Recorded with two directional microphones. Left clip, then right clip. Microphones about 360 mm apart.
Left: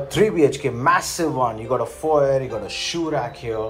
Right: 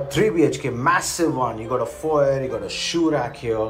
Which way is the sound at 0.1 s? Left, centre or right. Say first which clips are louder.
Left 2 dB; centre.